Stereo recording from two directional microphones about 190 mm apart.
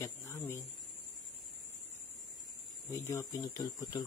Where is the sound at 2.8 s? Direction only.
15° left (ahead or behind).